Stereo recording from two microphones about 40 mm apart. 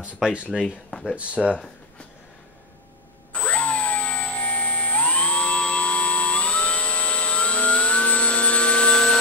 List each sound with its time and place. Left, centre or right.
0.2 s speech: centre
0.7 s speech: left
1.1 s speech: right
3.3 s a sound: left